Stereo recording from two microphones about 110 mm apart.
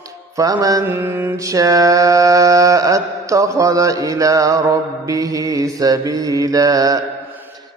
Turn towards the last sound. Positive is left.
turn(degrees=-30)  # may be behind; listen again after turning